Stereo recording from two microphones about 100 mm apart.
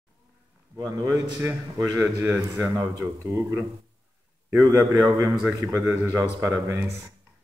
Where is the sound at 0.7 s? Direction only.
40° right (ahead or behind).